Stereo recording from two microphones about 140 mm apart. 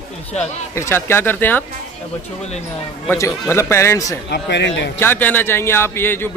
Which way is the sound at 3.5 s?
20° left (ahead or behind).